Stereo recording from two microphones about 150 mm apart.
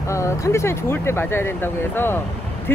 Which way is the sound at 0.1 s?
20° left (ahead or behind).